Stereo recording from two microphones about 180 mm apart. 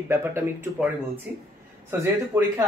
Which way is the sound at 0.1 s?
15° right (ahead or behind).